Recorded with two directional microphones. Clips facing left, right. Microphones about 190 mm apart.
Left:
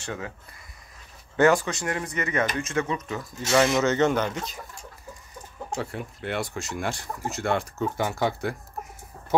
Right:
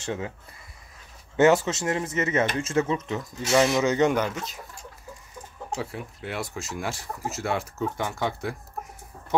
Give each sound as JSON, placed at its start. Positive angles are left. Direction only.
{"t": 0.0, "sound": "speech", "side_deg": -25}
{"t": 1.3, "sound": "speech", "side_deg": -20}
{"t": 3.4, "sound": "speech", "side_deg": -10}
{"t": 5.8, "sound": "speech", "side_deg": 0}